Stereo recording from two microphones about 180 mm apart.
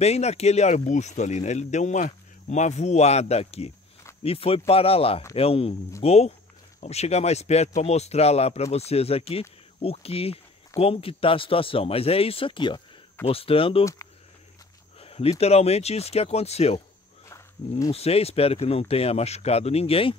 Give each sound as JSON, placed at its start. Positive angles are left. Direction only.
{"t": 0.0, "sound": "speech", "side_deg": 35}
{"t": 15.0, "sound": "speech", "side_deg": 35}
{"t": 17.3, "sound": "wild animals", "side_deg": 20}
{"t": 17.9, "sound": "speech", "side_deg": 35}